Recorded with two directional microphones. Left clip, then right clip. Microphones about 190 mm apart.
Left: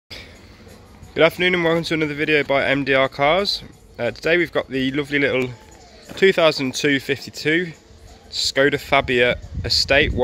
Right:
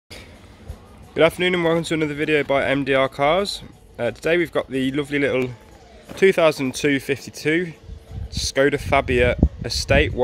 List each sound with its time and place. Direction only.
1.1 s speech: centre (ahead or behind)